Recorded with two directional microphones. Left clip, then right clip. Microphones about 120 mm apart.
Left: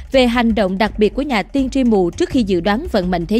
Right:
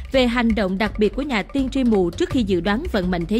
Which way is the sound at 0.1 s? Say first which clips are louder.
Left 5 dB; 35° left (ahead or behind).